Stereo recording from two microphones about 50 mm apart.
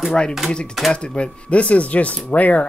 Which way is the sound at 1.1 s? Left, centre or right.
Left.